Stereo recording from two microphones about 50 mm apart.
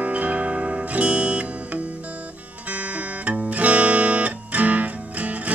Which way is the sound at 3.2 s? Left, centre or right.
Right.